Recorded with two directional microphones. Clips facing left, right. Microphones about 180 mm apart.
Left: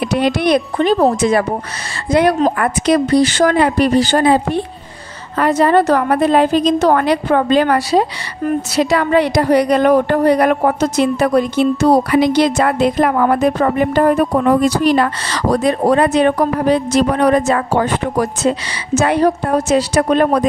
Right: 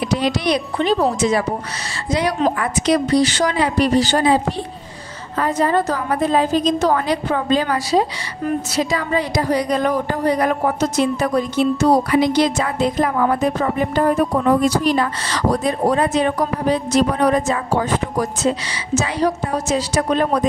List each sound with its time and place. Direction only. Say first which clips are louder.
0.1 s speech: left 5 dB; 60° left (ahead or behind)
2.6 s speech: left 4 dB; 55° left (ahead or behind)
5.4 s a woman's voice: left 6 dB; 75° left (ahead or behind)
18.9 s speech: left 6 dB; 55° left (ahead or behind)